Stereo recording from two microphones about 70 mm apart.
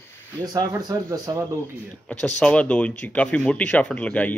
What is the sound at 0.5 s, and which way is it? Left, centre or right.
Speech, right.